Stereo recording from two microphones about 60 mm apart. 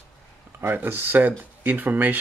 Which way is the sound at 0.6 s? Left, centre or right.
Right.